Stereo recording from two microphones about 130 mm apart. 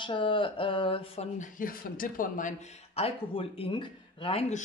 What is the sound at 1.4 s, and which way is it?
Speech, 90° left.